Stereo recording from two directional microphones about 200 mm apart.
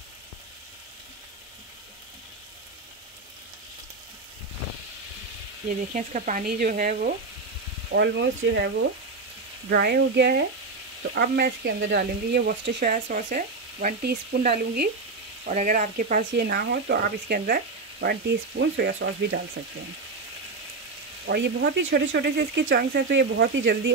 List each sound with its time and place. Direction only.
5.7 s sizzle: 40° right (ahead or behind)
7.9 s speech: 55° right (ahead or behind)
15.4 s sizzle: 40° right (ahead or behind)
16.3 s speech: 55° right (ahead or behind)
21.3 s speech: 55° right (ahead or behind)